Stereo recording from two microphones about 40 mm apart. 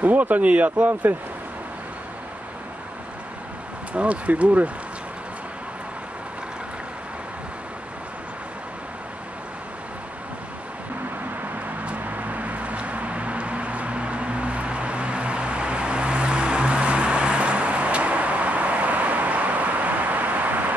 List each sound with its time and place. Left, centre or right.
0.0 s speech: right
3.9 s speech: right
11.8 s a sound: right